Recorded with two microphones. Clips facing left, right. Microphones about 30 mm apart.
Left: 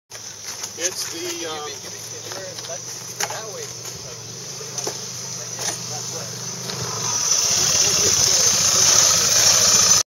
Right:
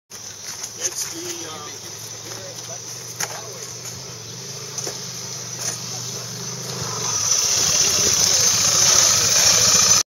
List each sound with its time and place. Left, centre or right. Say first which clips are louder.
1.1 s speech: left 3 dB; left
3.2 s speech: left 3 dB; centre
5.9 s vehicle: left 1 dB; centre